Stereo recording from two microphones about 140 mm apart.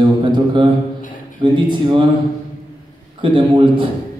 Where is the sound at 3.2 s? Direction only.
35° right (ahead or behind).